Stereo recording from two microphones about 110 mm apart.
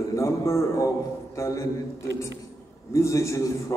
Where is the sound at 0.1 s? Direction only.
25° left (ahead or behind).